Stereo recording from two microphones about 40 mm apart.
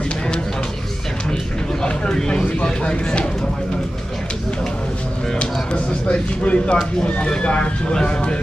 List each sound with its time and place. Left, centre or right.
1.8 s a sound: centre
5.4 s music: left
7.2 s speech: left